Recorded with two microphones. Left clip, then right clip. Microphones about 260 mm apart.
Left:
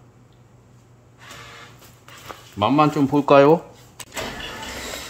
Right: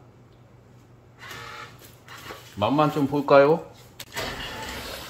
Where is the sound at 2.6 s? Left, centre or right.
Left.